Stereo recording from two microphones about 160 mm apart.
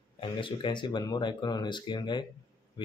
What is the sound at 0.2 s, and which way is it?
Speech, 30° left (ahead or behind).